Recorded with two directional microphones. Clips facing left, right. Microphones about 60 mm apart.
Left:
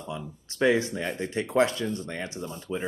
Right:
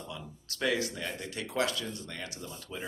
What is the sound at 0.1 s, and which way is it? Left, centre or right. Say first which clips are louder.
Speech: left 7 dB; left.